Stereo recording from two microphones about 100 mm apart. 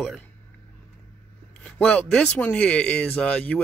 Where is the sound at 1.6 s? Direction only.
10° left (ahead or behind).